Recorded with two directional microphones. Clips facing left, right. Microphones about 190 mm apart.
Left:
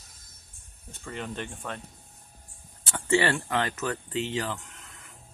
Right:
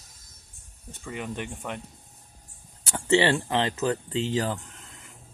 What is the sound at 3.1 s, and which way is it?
Speech, 25° right (ahead or behind).